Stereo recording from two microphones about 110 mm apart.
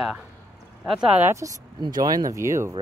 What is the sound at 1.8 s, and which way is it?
Speech, 35° right (ahead or behind).